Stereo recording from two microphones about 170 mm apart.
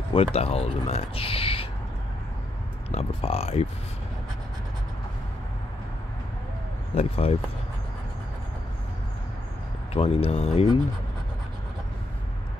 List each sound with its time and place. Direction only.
0.1 s speech: 35° left (ahead or behind)
2.9 s speech: 35° left (ahead or behind)
7.0 s speech: 35° left (ahead or behind)
9.9 s speech: 35° left (ahead or behind)